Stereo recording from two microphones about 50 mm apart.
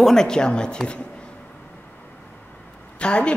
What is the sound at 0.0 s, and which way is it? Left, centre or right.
Speech, centre.